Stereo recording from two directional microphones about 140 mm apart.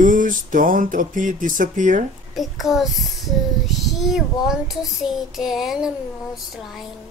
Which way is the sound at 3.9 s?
Centre (ahead or behind).